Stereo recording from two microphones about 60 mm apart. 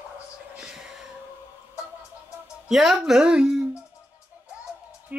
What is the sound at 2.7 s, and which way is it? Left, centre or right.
Speech, centre.